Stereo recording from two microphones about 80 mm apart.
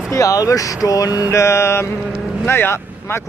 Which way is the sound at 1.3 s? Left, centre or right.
Left.